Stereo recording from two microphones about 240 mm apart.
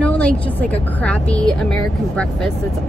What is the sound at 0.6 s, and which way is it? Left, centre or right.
Speech, centre.